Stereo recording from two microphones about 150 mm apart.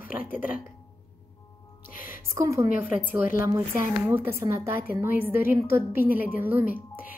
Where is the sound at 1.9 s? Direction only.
70° left (ahead or behind).